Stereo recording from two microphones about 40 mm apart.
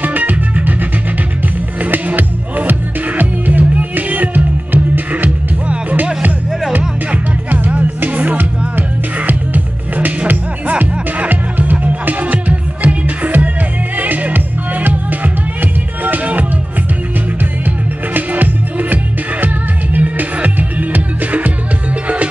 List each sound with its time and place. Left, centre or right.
0.0 s music: right
1.8 s music: right
7.1 s music: right
18.1 s music: right